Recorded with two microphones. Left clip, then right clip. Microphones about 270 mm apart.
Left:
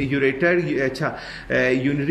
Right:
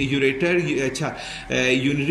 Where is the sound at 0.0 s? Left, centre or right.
Centre.